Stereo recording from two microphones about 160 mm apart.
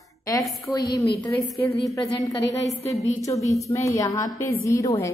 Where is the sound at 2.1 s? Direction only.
20° left (ahead or behind).